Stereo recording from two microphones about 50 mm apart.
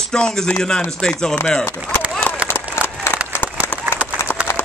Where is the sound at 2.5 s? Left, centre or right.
Left.